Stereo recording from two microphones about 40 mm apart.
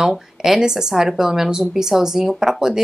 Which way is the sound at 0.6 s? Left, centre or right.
Centre.